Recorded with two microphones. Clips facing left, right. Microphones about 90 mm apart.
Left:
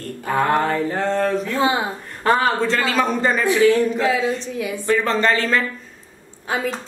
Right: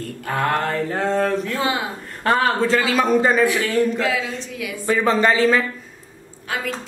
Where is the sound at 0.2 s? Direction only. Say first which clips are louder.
Left 3 dB; 10° left (ahead or behind).